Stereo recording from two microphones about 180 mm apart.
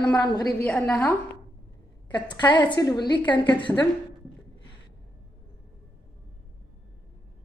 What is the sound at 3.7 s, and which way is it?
Speech, 5° left (ahead or behind).